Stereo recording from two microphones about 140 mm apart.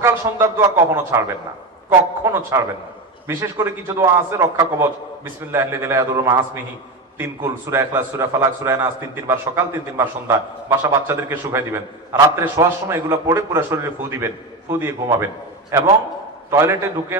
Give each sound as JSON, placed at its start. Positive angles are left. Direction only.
{"t": 0.0, "sound": "a man's voice", "side_deg": -20}